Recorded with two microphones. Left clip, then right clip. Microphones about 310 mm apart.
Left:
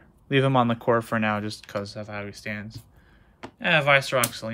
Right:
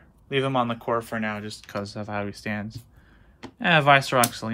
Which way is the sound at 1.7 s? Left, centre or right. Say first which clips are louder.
Right 4 dB; centre.